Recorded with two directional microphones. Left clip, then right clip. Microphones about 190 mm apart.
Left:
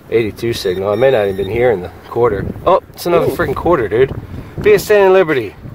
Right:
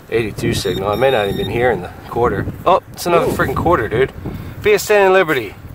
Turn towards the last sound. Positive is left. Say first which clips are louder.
# left 2 dB
turn(degrees=10)  # may be behind; listen again after turning